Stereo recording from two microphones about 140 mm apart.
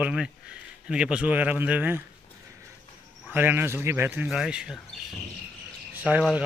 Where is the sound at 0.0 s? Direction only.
5° right (ahead or behind).